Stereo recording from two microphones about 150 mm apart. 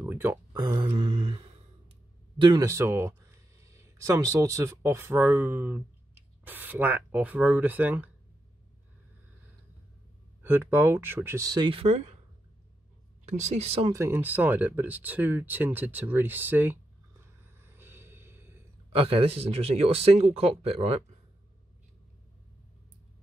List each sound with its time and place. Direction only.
0.1 s speech: 15° right (ahead or behind)
0.5 s speech: 30° right (ahead or behind)
2.6 s speech: 20° right (ahead or behind)
10.4 s speech: 15° right (ahead or behind); by 12.2 s 45° right (ahead or behind)
13.2 s speech: 50° right (ahead or behind)
13.9 s speech: 15° right (ahead or behind)
17.6 s a sound: 15° right (ahead or behind)
18.9 s speech: 40° right (ahead or behind)